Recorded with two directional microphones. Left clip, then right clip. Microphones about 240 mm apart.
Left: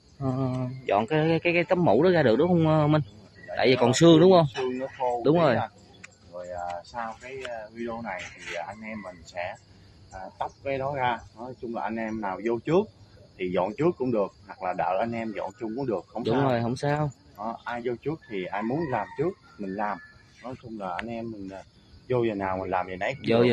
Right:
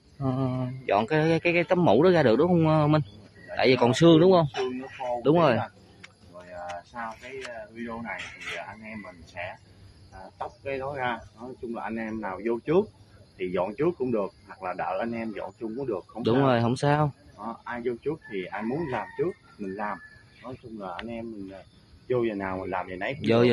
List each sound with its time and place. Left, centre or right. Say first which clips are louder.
0.2 s speech: even; centre
3.9 s a man's voice: left 3 dB; centre
7.7 s speech: left 2 dB; left
16.4 s speech: right 3 dB; centre
17.4 s speech: left 2 dB; left
23.2 s speech: even; centre